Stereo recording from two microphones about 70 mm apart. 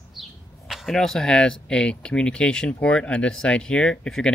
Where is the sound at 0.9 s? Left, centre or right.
Centre.